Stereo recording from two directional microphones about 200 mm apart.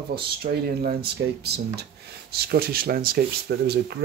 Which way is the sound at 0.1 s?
50° right (ahead or behind).